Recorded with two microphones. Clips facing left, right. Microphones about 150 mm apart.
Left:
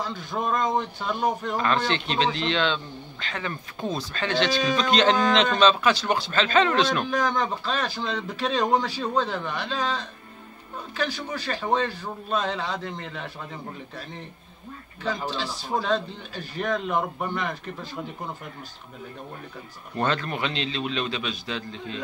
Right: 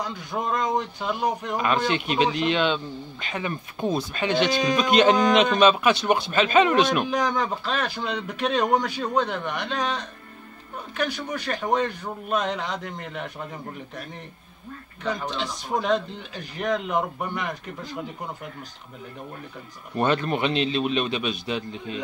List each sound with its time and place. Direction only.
0.0 s speech: 15° right (ahead or behind)
11.2 s speech: 15° right (ahead or behind)
15.2 s speech: 15° right (ahead or behind)
20.0 s a man's voice: 20° right (ahead or behind)